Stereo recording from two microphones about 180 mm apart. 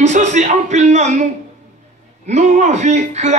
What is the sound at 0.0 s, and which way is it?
Speech, 40° right (ahead or behind).